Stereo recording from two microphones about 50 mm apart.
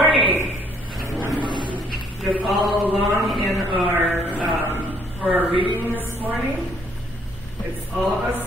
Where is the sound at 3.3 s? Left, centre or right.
Centre.